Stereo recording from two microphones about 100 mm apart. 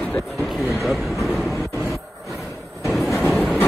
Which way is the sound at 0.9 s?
Centre (ahead or behind).